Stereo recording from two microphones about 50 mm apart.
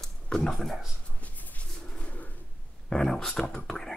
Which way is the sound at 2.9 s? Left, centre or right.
Centre.